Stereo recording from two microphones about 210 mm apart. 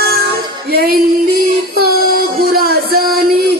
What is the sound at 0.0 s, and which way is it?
Female singing, 50° right (ahead or behind).